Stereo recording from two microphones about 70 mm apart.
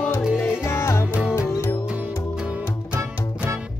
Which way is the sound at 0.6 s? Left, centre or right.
Left.